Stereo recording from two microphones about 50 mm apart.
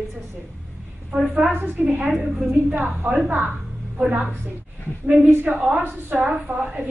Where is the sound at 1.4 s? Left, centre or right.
Right.